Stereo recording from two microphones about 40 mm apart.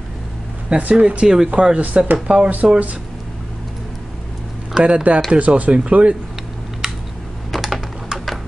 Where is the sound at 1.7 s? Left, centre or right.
Right.